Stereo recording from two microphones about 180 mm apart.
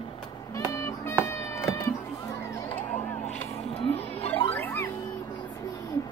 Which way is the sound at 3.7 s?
30° left (ahead or behind).